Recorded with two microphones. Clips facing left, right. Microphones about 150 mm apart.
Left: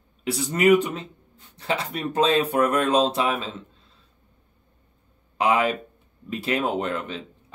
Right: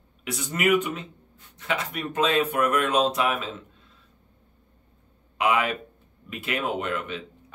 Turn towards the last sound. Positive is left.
turn(degrees=35)  # may be behind; listen again after turning